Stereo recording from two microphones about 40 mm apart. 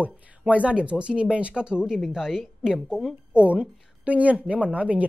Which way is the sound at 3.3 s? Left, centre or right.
Right.